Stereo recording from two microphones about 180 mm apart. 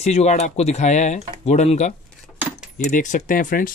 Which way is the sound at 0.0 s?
40° left (ahead or behind).